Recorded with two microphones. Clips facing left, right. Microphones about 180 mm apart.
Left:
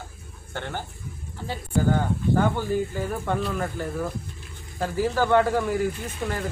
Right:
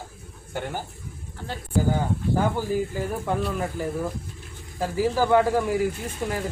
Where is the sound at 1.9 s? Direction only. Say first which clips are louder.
Left 1 dB; 5° right (ahead or behind).